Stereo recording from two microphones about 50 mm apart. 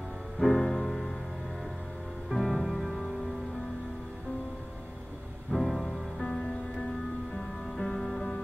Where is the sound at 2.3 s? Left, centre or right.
Centre.